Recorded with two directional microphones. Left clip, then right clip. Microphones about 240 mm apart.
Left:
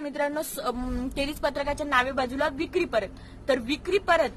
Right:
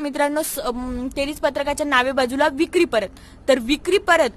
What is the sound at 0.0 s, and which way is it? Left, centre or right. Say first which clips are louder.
Speech: right 7 dB; right.